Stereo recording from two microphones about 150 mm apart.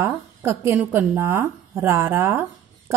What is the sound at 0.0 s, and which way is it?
A woman's voice, 15° right (ahead or behind).